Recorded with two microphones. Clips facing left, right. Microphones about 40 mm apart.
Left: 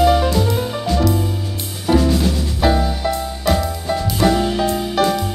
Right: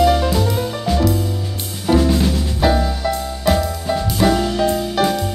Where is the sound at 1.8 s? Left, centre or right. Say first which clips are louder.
Even; centre.